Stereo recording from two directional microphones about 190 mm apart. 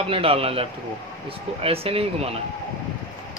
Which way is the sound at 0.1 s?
30° right (ahead or behind).